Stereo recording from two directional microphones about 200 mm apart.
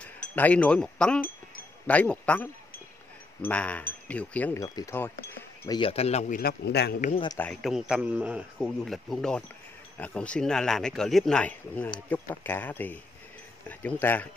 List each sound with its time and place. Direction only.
0.0 s speech: 5° left (ahead or behind)
5.7 s speech: 25° left (ahead or behind)
6.3 s a man's voice: 50° left (ahead or behind)
7.2 s a man's voice: 10° left (ahead or behind)